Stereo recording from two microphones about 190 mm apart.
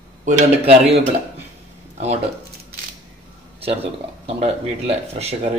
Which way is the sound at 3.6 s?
30° right (ahead or behind).